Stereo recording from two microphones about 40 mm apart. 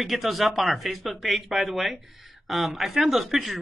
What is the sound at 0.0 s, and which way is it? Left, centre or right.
Speech, centre.